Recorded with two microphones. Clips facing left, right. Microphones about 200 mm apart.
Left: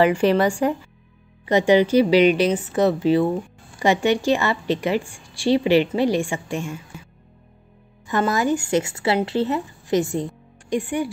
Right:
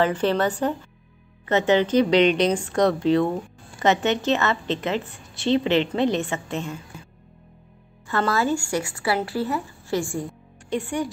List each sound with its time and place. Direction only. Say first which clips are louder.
0.0 s a woman's voice: left 4 dB; 10° left (ahead or behind)
8.1 s speech: left 2 dB; 15° left (ahead or behind)